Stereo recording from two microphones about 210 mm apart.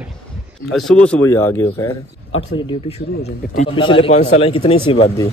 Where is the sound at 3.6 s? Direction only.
25° left (ahead or behind).